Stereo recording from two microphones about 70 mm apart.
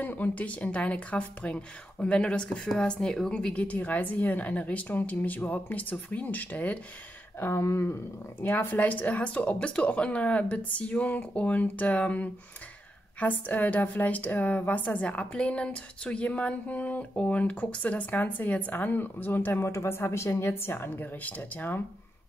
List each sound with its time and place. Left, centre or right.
0.0 s a woman's voice: left
7.3 s a woman's voice: left
19.6 s a woman's voice: left